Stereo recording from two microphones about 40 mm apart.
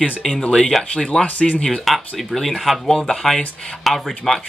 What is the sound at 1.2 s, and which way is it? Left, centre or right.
Speech, left.